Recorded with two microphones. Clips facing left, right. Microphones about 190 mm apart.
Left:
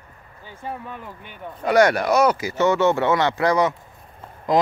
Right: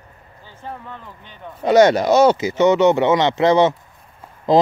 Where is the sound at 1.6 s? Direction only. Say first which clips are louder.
Right 4 dB; 25° right (ahead or behind).